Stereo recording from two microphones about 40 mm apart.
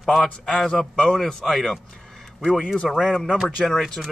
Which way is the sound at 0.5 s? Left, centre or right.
Centre.